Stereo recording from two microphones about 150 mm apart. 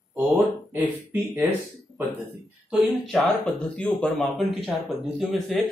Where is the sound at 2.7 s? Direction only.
Centre (ahead or behind).